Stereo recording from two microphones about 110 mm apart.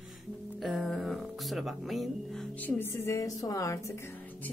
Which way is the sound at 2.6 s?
15° left (ahead or behind).